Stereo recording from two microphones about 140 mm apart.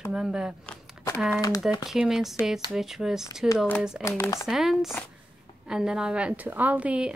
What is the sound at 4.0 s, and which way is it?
Speech, 20° left (ahead or behind).